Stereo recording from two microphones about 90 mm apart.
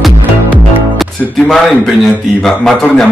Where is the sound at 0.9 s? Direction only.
Centre (ahead or behind).